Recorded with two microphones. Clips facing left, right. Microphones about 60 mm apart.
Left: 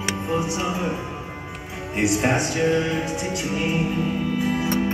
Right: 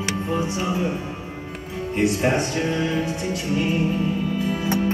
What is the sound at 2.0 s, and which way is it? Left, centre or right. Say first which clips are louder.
Music: even; centre.